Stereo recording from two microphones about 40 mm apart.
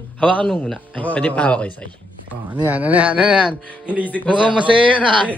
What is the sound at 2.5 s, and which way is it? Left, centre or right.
Speech, right.